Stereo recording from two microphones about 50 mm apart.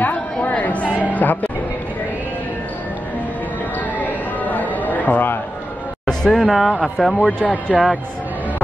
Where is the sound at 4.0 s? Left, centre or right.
Left.